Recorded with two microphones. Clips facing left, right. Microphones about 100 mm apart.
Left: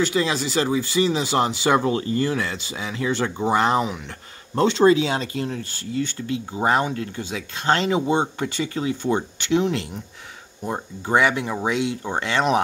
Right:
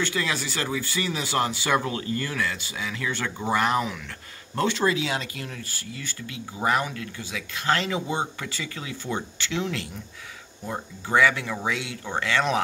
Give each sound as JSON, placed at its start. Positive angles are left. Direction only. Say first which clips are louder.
{"t": 0.0, "sound": "speech", "louder": "left 6 dB", "side_deg": 20}